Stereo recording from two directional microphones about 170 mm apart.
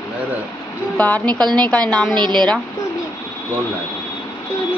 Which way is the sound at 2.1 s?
25° right (ahead or behind).